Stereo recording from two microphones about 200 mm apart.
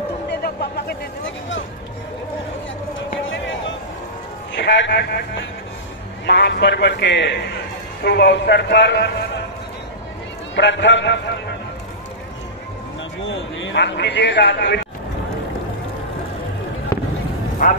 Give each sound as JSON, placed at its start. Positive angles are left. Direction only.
{"t": 0.3, "sound": "a sound", "side_deg": 55}
{"t": 3.3, "sound": "a sound", "side_deg": 70}
{"t": 4.6, "sound": "a man's voice", "side_deg": 60}
{"t": 6.2, "sound": "a man's voice", "side_deg": 60}
{"t": 10.5, "sound": "a man's voice", "side_deg": 60}
{"t": 13.2, "sound": "a man's voice", "side_deg": 70}